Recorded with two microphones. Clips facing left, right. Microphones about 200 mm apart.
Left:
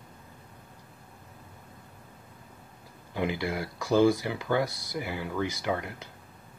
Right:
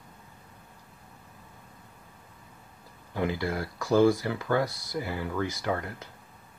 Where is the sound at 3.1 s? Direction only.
20° left (ahead or behind).